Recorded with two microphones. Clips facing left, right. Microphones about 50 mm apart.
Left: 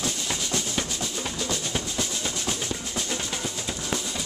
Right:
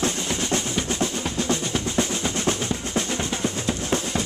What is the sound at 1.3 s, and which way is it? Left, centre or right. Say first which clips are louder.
Drum: right 5 dB; right.